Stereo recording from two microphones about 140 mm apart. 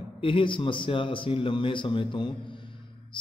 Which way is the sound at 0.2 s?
40° left (ahead or behind).